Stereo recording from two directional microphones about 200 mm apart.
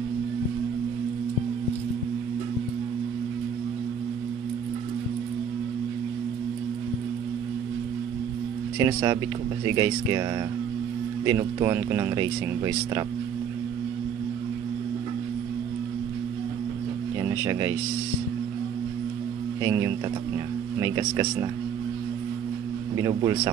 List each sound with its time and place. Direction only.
8.7 s speech: 20° right (ahead or behind)
11.2 s speech: 15° right (ahead or behind)
17.2 s music: 15° right (ahead or behind)
19.6 s speech: 15° right (ahead or behind)
22.9 s speech: 20° right (ahead or behind)